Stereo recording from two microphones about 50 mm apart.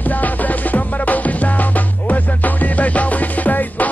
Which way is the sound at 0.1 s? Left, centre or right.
Left.